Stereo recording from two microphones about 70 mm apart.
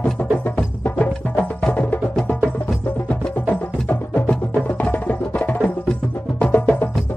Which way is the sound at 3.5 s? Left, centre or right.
Left.